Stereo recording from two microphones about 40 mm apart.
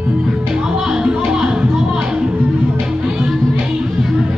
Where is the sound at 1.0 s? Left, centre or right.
Right.